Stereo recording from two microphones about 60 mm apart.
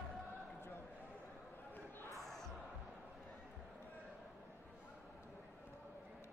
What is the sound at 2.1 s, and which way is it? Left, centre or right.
Music, centre.